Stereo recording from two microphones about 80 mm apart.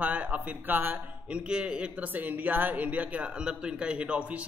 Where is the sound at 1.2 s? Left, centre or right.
Centre.